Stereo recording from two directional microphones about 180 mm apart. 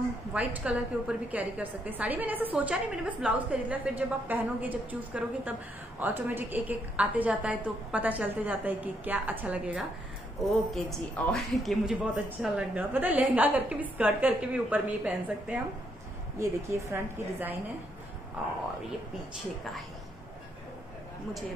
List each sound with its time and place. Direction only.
0.3 s a woman's voice: 10° right (ahead or behind)
16.9 s a woman's voice: 10° right (ahead or behind)